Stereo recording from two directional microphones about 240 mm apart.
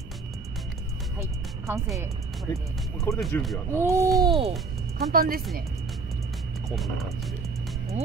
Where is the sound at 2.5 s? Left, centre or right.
Centre.